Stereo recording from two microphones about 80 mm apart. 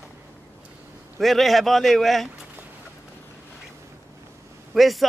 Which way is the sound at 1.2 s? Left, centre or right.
Centre.